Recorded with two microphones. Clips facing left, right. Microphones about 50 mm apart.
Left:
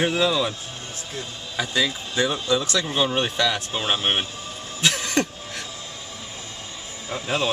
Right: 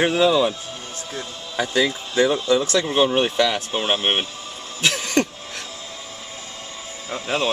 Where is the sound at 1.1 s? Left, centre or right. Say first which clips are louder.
Right 2 dB; right.